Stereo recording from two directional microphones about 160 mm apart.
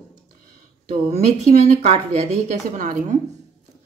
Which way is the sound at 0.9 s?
45° right (ahead or behind).